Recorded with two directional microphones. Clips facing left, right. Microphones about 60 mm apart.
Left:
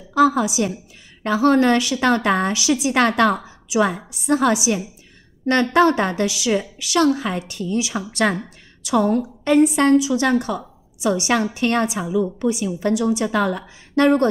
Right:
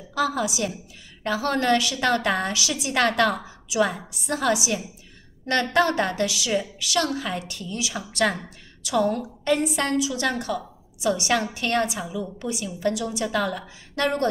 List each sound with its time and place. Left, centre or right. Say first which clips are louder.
0.1 s a woman's voice: left 8 dB; left